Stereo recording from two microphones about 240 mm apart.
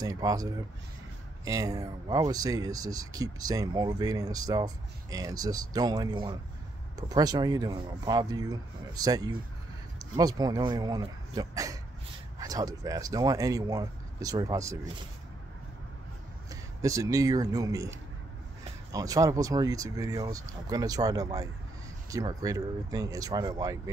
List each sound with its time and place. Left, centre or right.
0.0 s speech: centre
16.4 s speech: centre